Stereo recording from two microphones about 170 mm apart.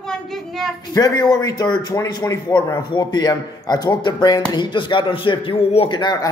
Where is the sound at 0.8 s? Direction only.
20° left (ahead or behind).